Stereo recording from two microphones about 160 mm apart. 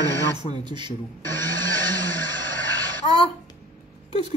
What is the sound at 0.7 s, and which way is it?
Speech, 30° right (ahead or behind).